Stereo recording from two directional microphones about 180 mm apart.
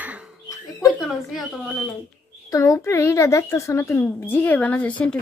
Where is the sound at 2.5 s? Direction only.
20° left (ahead or behind).